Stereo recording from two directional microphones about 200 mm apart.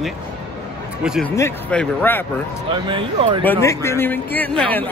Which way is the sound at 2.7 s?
25° right (ahead or behind).